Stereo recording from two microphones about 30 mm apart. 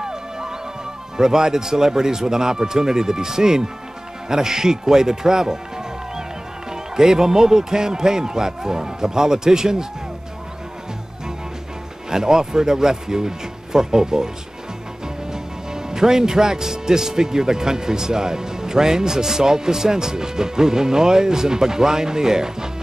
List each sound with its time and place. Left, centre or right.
0.0 s music: right
1.1 s a man's voice: centre
6.7 s a man's voice: centre
12.1 s a man's voice: right
15.3 s a man's voice: right